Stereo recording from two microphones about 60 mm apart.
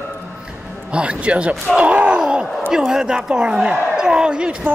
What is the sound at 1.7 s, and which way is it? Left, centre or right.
Groan, centre.